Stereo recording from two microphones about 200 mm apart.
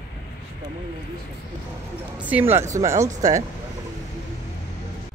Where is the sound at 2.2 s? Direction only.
10° right (ahead or behind).